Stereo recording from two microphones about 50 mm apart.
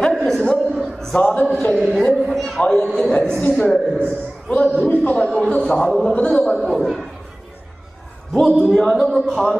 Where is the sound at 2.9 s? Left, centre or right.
Centre.